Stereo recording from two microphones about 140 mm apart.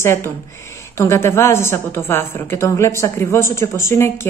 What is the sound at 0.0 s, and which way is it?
A woman's voice, 20° left (ahead or behind).